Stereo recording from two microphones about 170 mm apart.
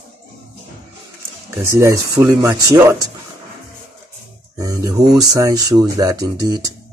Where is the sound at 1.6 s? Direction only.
15° right (ahead or behind).